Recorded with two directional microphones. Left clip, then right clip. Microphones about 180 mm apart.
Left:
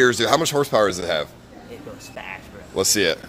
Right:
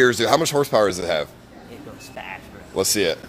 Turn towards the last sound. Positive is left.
turn(degrees=0)  # may be behind; listen again after turning